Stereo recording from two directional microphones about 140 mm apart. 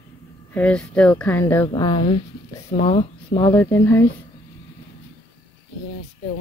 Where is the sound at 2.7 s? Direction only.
45° left (ahead or behind).